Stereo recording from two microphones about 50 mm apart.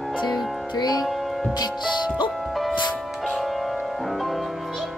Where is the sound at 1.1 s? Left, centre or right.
Centre.